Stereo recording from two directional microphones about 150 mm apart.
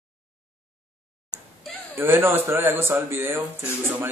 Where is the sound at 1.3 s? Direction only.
5° right (ahead or behind).